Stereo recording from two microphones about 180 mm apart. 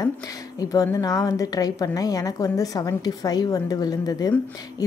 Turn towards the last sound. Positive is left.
turn(degrees=20)  # may be behind; listen again after turning